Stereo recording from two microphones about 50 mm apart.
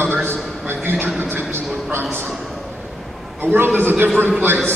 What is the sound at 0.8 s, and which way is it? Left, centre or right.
Speech, right.